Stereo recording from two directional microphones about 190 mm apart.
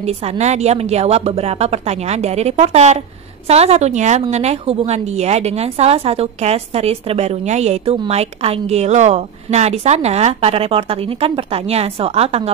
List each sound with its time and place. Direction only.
0.0 s a woman's voice: 35° right (ahead or behind)